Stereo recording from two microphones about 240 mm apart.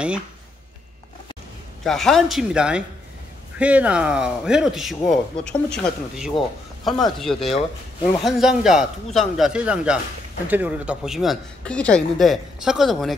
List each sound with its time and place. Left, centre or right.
1.9 s speech: centre
7.5 s speech: left
8.2 s speech: centre